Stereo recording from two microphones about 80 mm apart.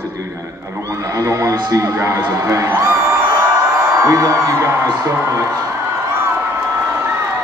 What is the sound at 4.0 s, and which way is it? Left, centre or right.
A man's voice, right.